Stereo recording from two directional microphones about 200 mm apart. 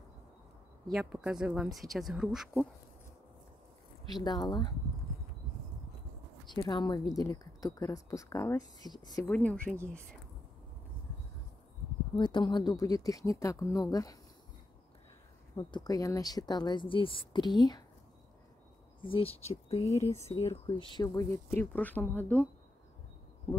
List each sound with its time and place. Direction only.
0.9 s speech: 5° right (ahead or behind)
4.1 s speech: 20° left (ahead or behind)
6.5 s speech: 20° left (ahead or behind)
9.3 s speech: 5° left (ahead or behind)
12.2 s speech: 25° left (ahead or behind)
15.5 s speech: 20° left (ahead or behind)
19.0 s speech: 30° left (ahead or behind)
19.8 s speech: 15° left (ahead or behind)